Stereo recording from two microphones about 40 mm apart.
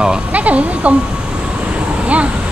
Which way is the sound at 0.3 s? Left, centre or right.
Right.